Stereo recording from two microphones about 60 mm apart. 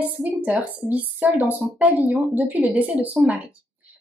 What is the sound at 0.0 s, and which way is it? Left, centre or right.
A woman's voice, right.